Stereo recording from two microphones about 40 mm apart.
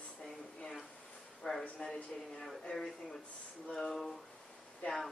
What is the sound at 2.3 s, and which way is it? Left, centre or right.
A woman's voice, centre.